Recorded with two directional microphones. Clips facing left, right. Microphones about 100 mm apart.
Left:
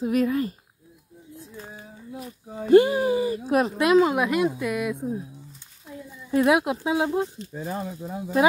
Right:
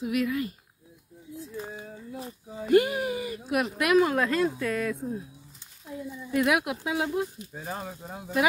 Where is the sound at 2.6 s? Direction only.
30° left (ahead or behind).